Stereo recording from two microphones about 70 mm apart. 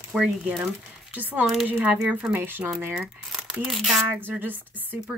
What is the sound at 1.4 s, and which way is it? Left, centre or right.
Speech, centre.